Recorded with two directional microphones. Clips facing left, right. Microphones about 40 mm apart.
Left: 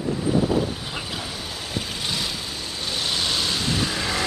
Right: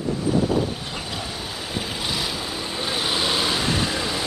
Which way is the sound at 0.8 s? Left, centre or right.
Centre.